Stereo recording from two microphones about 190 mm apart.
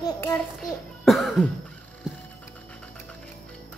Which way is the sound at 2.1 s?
5° right (ahead or behind).